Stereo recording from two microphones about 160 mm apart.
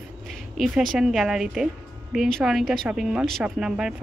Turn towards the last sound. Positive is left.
turn(degrees=-5)  # may be behind; listen again after turning